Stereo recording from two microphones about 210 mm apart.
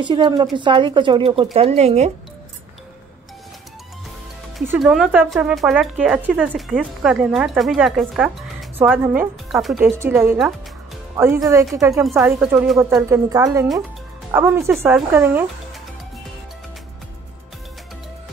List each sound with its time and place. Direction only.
0.0 s speech: 20° right (ahead or behind)
4.6 s speech: 5° right (ahead or behind)
11.5 s speech: 15° right (ahead or behind)
11.9 s speech: centre (ahead or behind)
13.1 s speech: 15° right (ahead or behind)